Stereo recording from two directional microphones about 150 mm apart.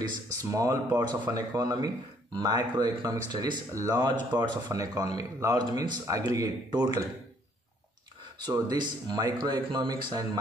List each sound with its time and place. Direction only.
0.0 s speech: 20° right (ahead or behind)
8.4 s speech: 30° right (ahead or behind)